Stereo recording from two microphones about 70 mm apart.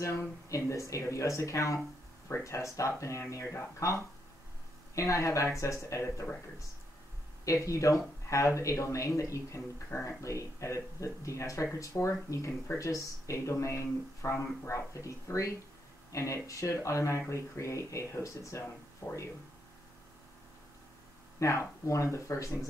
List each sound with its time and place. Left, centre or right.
0.5 s speech: left
7.4 s speech: left
21.4 s speech: left